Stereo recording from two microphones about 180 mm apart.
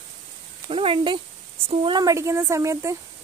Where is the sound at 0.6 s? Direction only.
30° right (ahead or behind).